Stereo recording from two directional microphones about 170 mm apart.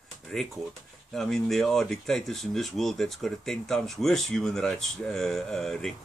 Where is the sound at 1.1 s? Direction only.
5° left (ahead or behind).